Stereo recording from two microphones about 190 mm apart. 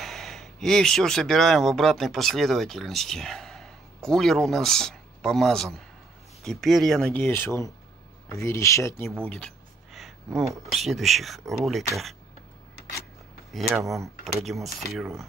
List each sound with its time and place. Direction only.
0.0 s speech: centre (ahead or behind)
13.5 s speech: centre (ahead or behind)